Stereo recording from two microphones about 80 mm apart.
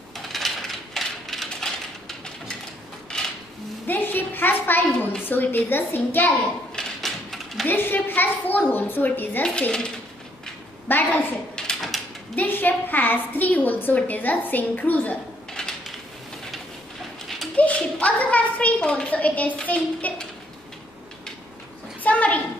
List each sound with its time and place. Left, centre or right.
0.3 s mechanisms: centre
3.8 s a sound: left
5.3 s a woman's voice: left
6.7 s typewriter: centre
7.6 s a woman's voice: left
9.4 s speech: centre
10.9 s a woman's voice: left
11.5 s mechanisms: centre
12.4 s a woman's voice: left
15.5 s a sound: centre
17.6 s a sound: centre
22.0 s a sound: centre